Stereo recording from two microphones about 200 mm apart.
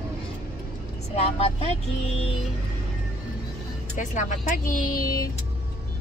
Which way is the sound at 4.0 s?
40° left (ahead or behind).